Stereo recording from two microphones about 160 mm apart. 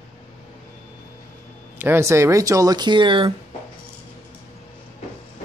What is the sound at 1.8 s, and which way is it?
Speech, 15° right (ahead or behind).